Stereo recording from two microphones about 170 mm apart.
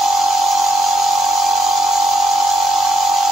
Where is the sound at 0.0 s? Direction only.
Centre (ahead or behind).